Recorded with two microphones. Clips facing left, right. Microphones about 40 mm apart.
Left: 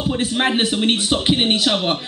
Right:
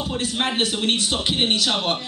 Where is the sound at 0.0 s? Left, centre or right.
Centre.